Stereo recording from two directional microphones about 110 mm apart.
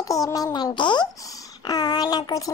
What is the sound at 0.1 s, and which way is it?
A woman's voice, 35° left (ahead or behind).